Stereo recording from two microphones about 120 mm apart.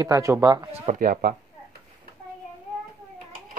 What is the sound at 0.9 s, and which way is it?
Speech, 85° right.